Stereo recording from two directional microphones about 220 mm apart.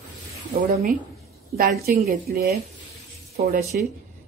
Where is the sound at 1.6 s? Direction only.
45° right (ahead or behind).